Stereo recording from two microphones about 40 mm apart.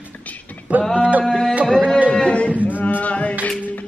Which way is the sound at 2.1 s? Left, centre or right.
Left.